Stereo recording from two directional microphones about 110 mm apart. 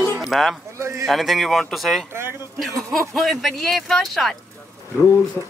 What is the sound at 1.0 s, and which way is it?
Speech, centre (ahead or behind).